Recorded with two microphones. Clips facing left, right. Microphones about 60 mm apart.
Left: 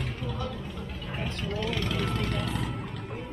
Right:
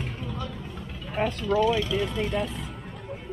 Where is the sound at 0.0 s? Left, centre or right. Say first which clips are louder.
Even; left.